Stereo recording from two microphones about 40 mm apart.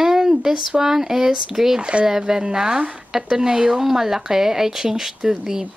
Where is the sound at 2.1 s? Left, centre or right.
Centre.